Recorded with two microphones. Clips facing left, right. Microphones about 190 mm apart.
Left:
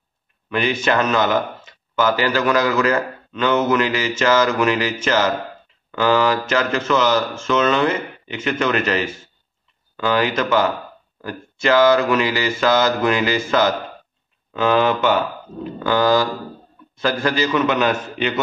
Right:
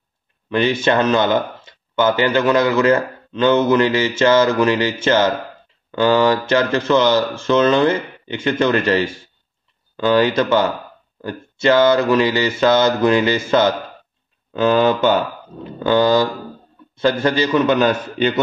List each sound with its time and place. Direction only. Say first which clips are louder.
0.5 s speech: right 3 dB; 30° right (ahead or behind)